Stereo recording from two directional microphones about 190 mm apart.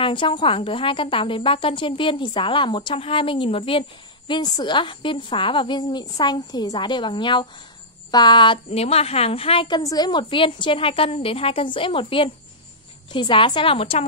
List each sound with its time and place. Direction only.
0.0 s a woman's voice: 25° left (ahead or behind)